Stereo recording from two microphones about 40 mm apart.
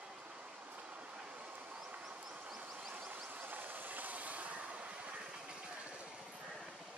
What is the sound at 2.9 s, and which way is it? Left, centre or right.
Vehicle, right.